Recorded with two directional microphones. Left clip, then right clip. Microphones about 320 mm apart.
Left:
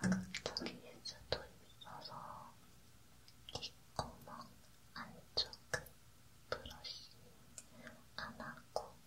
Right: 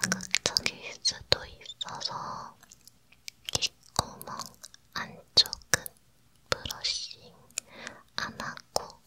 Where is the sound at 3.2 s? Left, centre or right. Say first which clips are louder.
Right 17 dB; right.